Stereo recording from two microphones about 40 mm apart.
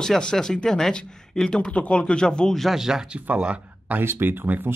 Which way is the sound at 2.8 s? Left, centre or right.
Centre.